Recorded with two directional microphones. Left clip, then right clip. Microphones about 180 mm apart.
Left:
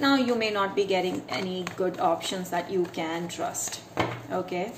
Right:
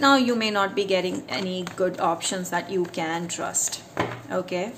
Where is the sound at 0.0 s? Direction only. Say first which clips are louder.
Right 4 dB; 25° right (ahead or behind).